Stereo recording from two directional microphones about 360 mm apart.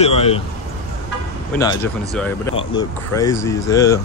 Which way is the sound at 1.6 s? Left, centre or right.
Centre.